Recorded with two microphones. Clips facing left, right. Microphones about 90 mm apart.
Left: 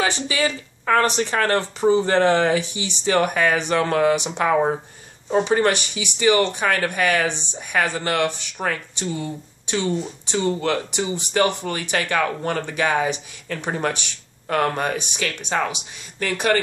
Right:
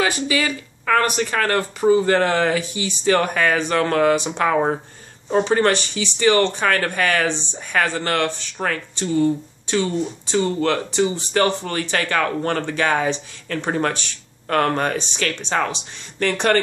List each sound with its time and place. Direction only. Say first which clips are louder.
0.0 s speech: right 1 dB; 25° left (ahead or behind); by 16.5 s 5° left (ahead or behind)